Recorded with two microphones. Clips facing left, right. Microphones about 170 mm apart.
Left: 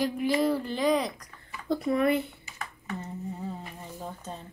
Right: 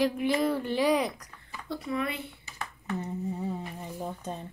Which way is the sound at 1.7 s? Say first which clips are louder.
Left 7 dB; 45° left (ahead or behind).